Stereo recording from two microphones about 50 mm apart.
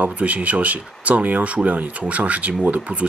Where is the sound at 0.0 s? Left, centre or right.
Right.